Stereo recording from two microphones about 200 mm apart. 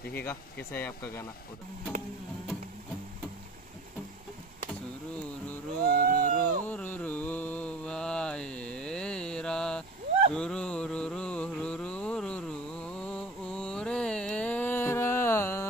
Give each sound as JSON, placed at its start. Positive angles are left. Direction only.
{"t": 0.1, "sound": "speech", "side_deg": 10}
{"t": 5.9, "sound": "a sound", "side_deg": -45}
{"t": 6.7, "sound": "mantra", "side_deg": 5}